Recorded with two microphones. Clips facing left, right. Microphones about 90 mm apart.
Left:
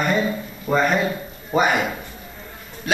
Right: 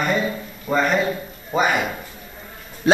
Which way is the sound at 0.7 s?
Centre (ahead or behind).